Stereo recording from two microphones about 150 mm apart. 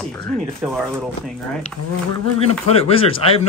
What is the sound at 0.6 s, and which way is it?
Speech, 15° right (ahead or behind).